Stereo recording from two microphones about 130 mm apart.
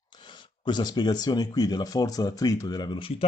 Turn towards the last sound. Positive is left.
turn(degrees=35)  # may be behind; listen again after turning